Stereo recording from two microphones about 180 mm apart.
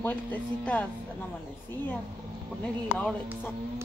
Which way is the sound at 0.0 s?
10° left (ahead or behind).